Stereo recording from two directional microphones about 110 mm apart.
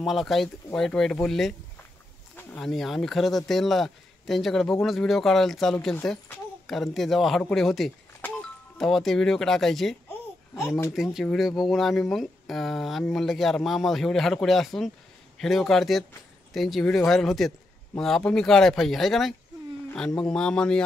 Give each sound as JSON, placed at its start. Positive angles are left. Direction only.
{"t": 0.0, "sound": "speech", "side_deg": 0}
{"t": 2.6, "sound": "speech", "side_deg": 0}
{"t": 10.0, "sound": "babbling", "side_deg": 20}
{"t": 10.9, "sound": "speech", "side_deg": 0}